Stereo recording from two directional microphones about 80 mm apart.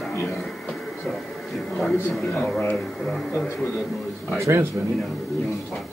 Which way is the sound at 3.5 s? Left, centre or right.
Left.